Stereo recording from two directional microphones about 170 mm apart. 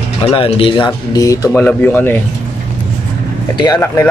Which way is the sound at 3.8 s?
15° left (ahead or behind).